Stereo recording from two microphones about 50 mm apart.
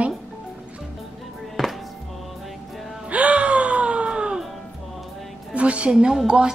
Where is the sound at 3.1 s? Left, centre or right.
Right.